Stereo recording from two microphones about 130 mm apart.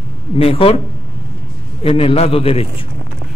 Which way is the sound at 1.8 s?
45° left (ahead or behind).